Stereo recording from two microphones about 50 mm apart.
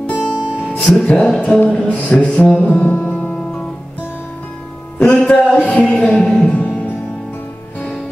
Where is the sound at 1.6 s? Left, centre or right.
Left.